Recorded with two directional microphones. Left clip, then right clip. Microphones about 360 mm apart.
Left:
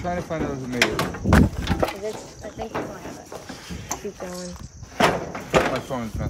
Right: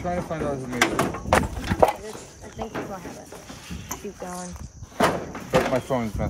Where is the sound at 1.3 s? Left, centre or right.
Centre.